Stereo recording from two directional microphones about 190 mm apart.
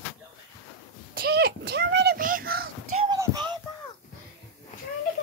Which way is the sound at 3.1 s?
20° right (ahead or behind).